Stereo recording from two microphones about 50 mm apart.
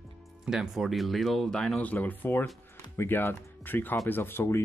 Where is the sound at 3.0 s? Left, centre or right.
Left.